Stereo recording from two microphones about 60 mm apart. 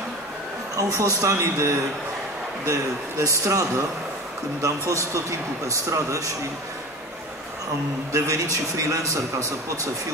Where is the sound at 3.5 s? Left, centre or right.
Right.